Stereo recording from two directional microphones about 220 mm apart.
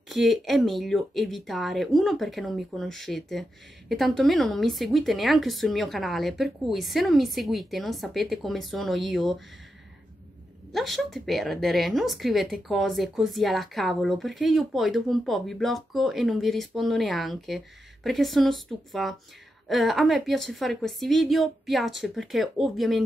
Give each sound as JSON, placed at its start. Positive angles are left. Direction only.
{"t": 0.1, "sound": "a woman's voice", "side_deg": 0}
{"t": 10.7, "sound": "a woman's voice", "side_deg": 0}